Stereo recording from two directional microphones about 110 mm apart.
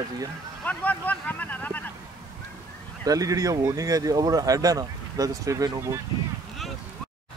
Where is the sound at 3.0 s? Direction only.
35° right (ahead or behind).